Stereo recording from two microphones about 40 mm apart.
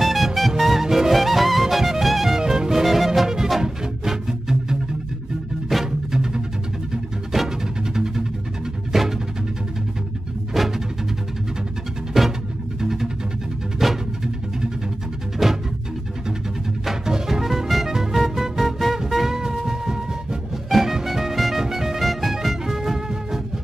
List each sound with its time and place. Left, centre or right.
0.0 s music: centre
5.9 s music: centre
10.5 s music: centre
12.1 s music: centre
13.7 s a sound: centre
15.4 s music: centre
16.8 s music: centre